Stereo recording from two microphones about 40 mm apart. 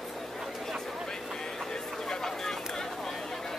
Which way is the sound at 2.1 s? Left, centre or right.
Centre.